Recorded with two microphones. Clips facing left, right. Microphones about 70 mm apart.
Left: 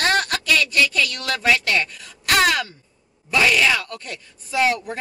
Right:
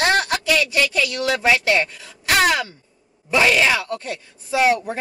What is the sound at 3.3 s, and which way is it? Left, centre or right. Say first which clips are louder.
Speech: right 1 dB; right.